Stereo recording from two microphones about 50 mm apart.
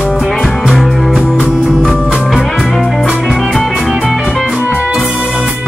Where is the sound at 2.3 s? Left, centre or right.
Centre.